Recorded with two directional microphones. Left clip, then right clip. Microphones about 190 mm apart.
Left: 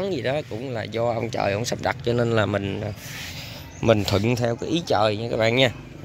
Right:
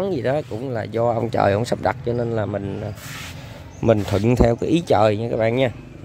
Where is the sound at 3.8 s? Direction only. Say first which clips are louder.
Right 1 dB; 15° right (ahead or behind).